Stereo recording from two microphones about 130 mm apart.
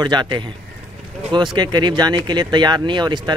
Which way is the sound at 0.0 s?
35° right (ahead or behind).